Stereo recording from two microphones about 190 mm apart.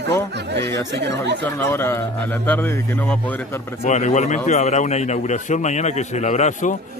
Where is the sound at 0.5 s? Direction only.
65° right (ahead or behind).